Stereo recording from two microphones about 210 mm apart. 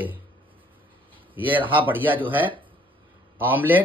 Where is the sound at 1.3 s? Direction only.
10° right (ahead or behind).